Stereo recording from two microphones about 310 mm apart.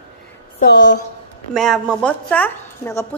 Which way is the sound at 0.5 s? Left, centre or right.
Left.